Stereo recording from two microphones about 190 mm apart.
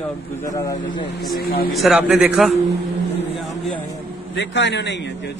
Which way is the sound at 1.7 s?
Centre (ahead or behind).